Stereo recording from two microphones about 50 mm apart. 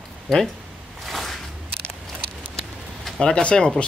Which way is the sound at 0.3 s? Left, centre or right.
Centre.